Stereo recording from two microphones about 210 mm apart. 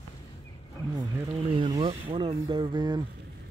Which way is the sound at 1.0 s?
20° right (ahead or behind).